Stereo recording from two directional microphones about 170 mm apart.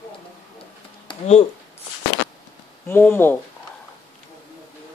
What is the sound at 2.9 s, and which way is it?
Speech, 10° left (ahead or behind).